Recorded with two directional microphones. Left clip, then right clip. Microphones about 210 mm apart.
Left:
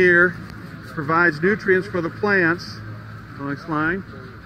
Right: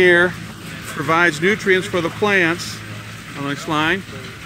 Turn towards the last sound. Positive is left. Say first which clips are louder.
# right 4 dB
turn(degrees=-15)  # may be behind; listen again after turning